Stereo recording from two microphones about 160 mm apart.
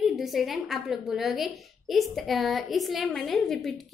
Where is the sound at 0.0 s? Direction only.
Centre (ahead or behind).